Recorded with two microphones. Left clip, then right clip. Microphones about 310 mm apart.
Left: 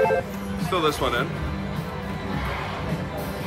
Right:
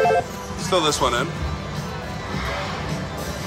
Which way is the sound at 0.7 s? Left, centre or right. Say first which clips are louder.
Right 3 dB; centre.